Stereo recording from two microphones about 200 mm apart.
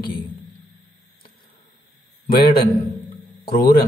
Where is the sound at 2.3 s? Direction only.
50° left (ahead or behind).